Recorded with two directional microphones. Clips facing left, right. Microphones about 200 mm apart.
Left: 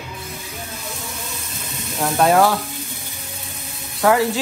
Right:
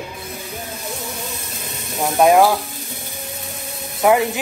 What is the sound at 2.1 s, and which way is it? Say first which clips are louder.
Speech: right 3 dB; 15° right (ahead or behind).